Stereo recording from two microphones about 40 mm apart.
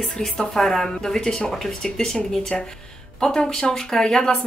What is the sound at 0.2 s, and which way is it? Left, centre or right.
Speech, centre.